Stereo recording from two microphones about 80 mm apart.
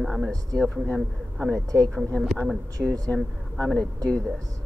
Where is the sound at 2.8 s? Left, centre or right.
Centre.